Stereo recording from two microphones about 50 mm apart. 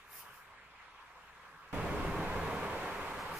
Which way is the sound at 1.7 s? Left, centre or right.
Right.